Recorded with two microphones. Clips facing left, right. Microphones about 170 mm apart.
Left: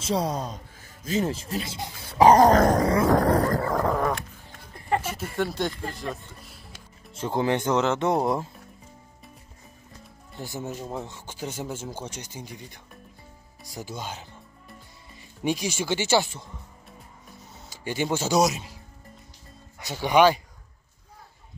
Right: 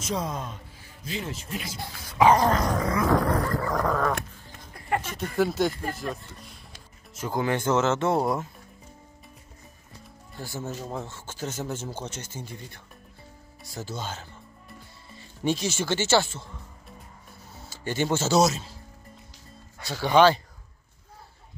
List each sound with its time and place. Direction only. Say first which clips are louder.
0.0 s speech: left 4 dB; 35° left (ahead or behind)
1.6 s speech: left 3 dB; 25° left (ahead or behind)
2.1 s dog: left 4 dB; 40° left (ahead or behind); by 4.1 s 25° left (ahead or behind)
5.0 s speech: right 3 dB; 5° left (ahead or behind)
7.1 s speech: left 2 dB; 30° left (ahead or behind)
10.3 s speech: left 1 dB; 20° left (ahead or behind)
17.6 s speech: right 1 dB; 10° left (ahead or behind)
19.8 s speech: even; 15° left (ahead or behind)